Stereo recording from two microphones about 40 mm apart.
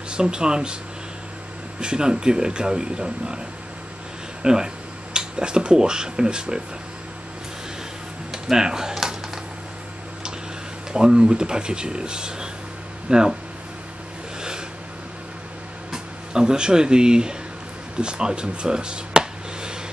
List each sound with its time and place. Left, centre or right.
0.1 s speech: right
1.8 s speech: right
4.4 s speech: centre
8.3 s computer keyboard: centre
10.9 s speech: centre
15.9 s speech: centre
18.0 s chop: right